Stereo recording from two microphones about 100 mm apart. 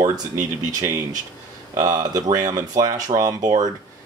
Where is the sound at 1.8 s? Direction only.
35° right (ahead or behind).